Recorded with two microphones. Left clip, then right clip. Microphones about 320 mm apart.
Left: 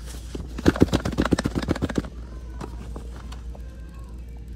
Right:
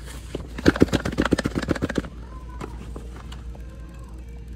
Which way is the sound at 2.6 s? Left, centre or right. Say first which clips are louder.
Right 1 dB; centre.